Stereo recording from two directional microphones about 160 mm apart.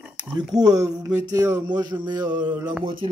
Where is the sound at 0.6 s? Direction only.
25° right (ahead or behind).